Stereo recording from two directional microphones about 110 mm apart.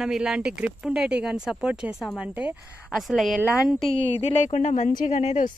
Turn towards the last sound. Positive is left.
turn(degrees=90)